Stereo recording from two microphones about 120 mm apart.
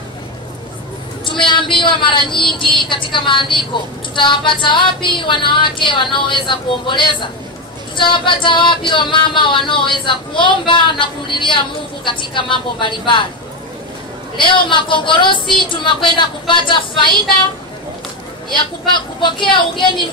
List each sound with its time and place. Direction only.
1.4 s a woman's voice: 45° left (ahead or behind)
14.4 s a woman's voice: 45° left (ahead or behind)
19.2 s a woman's voice: 40° left (ahead or behind)